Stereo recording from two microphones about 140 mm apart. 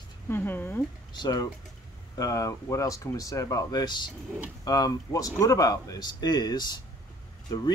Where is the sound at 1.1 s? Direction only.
30° left (ahead or behind).